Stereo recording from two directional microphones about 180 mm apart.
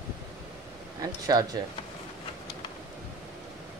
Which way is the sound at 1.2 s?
20° right (ahead or behind).